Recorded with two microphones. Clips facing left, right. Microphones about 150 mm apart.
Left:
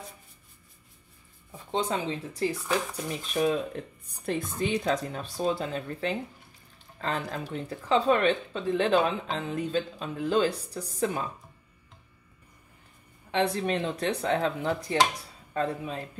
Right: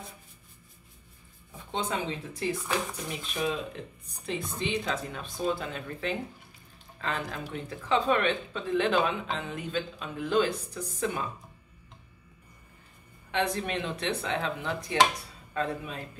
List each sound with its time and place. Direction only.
1.7 s speech: 35° left (ahead or behind)
13.3 s speech: 30° left (ahead or behind)